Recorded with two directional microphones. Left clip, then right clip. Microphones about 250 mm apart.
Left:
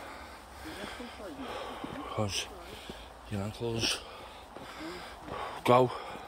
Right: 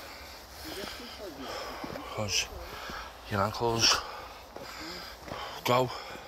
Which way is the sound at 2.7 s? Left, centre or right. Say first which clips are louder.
Right 5 dB; centre.